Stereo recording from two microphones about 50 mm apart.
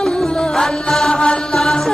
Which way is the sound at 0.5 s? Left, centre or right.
Centre.